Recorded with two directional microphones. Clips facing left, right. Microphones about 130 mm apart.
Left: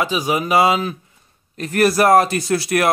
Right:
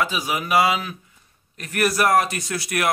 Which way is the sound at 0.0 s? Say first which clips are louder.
Left 5 dB; 25° left (ahead or behind).